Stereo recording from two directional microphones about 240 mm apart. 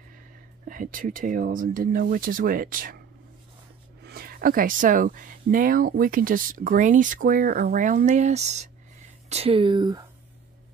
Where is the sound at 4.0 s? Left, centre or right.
Right; by 10.0 s centre.